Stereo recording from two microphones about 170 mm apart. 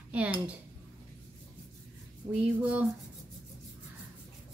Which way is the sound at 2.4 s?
10° right (ahead or behind).